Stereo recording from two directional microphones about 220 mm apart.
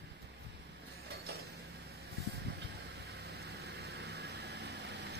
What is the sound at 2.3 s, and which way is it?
Vehicle, 50° right (ahead or behind).